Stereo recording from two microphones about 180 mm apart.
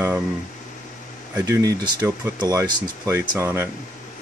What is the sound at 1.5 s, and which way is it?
Speech, 15° right (ahead or behind).